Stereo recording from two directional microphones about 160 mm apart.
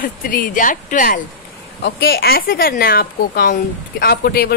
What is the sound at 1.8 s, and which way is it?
Speech, 85° left.